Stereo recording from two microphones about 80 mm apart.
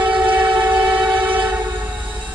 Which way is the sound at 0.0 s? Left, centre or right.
Centre.